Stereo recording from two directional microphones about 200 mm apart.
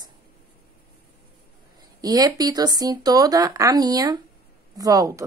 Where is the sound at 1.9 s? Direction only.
20° right (ahead or behind).